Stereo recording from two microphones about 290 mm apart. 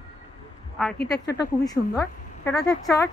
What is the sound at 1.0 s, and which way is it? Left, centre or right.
Speech, left.